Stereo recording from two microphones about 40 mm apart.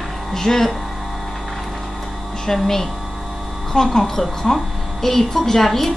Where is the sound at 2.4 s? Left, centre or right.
Centre.